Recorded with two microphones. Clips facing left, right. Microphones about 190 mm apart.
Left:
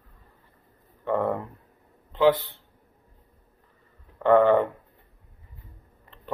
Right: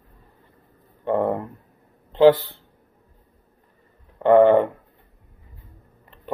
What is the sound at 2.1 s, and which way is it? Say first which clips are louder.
Speech: right 6 dB; 35° right (ahead or behind).